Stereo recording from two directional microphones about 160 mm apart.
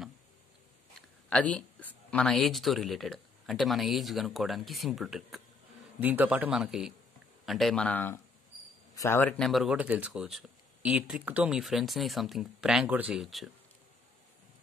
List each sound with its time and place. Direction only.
1.3 s a man's voice: 10° left (ahead or behind)
9.4 s speech: centre (ahead or behind)